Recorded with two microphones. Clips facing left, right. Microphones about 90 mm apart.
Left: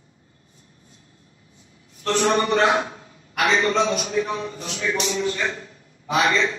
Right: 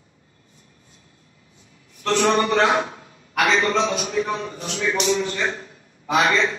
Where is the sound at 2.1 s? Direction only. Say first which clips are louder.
Right 1 dB; 30° left (ahead or behind).